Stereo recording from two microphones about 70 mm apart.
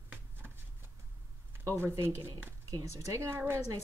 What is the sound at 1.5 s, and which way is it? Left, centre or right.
Speech, right.